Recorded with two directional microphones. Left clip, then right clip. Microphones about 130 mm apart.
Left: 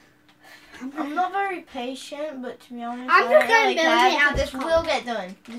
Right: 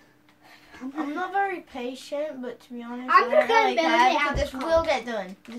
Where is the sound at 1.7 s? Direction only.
10° left (ahead or behind).